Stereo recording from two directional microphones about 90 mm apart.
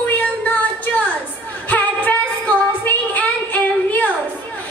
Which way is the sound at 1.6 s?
20° left (ahead or behind).